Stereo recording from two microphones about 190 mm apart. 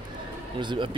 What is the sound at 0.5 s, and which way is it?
Speech, 25° right (ahead or behind).